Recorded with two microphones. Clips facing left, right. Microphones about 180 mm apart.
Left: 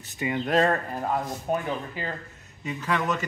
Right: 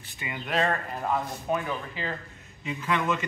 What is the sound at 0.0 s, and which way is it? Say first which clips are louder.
Speech: left 9 dB; 40° left (ahead or behind).